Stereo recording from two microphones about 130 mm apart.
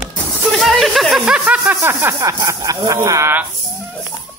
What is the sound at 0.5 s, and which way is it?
Speech, centre (ahead or behind).